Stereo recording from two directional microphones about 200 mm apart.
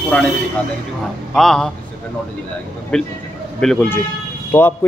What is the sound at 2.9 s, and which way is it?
Speech, 5° left (ahead or behind).